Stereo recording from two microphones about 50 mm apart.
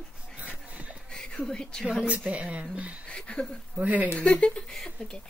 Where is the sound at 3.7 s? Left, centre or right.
Right.